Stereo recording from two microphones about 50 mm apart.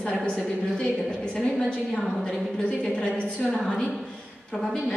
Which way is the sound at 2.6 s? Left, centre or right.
Left.